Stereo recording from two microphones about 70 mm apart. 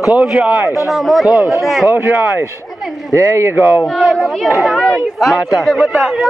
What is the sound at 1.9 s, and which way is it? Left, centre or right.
Speech, right.